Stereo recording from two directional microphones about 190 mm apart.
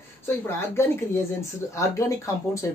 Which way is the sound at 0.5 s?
15° left (ahead or behind).